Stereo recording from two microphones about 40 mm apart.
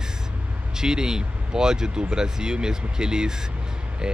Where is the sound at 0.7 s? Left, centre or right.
Centre.